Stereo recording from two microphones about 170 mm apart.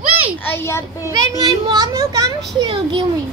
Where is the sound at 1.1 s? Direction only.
25° right (ahead or behind).